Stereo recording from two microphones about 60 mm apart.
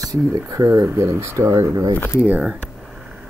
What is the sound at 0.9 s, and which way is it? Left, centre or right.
Speech, right.